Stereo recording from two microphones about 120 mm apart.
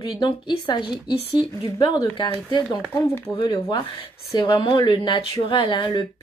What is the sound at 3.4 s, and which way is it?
Speech, 40° left (ahead or behind).